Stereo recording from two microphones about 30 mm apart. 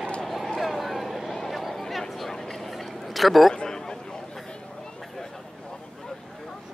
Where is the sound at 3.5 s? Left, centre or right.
Left.